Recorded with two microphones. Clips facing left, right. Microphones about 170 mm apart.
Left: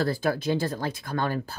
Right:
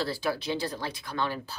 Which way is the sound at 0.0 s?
50° left (ahead or behind).